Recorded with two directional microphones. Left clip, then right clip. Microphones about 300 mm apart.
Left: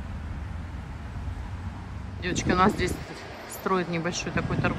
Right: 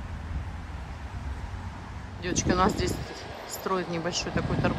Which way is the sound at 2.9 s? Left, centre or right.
Right.